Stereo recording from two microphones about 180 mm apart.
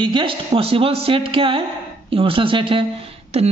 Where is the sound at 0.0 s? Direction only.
30° right (ahead or behind).